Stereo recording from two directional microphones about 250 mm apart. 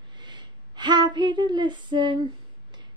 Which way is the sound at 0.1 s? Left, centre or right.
Centre.